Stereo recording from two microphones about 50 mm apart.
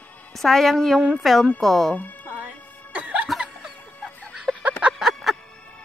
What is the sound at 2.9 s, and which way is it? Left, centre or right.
Cough, right.